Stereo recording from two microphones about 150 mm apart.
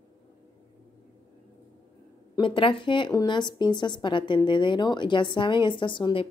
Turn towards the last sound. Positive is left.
turn(degrees=35)  # may be behind; listen again after turning